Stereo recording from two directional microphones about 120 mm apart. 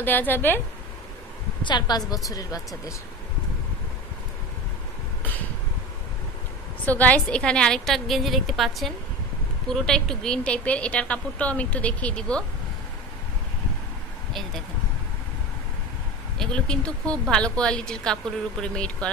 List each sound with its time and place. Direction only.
0.0 s speech: 15° left (ahead or behind)
1.6 s a woman's voice: 40° left (ahead or behind)
6.9 s a woman's voice: 10° left (ahead or behind)
16.3 s speech: 5° left (ahead or behind)